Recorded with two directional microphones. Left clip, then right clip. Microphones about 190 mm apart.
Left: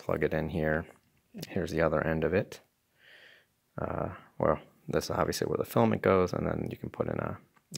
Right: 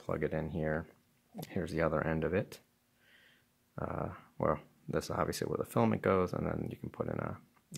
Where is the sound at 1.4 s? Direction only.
20° left (ahead or behind).